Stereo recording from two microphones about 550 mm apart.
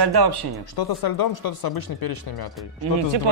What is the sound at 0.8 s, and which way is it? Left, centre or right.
Speech, left.